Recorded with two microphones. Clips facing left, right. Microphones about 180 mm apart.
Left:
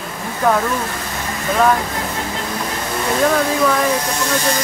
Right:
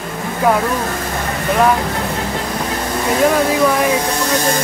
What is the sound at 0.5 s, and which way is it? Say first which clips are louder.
Speech: right 1 dB; 10° right (ahead or behind).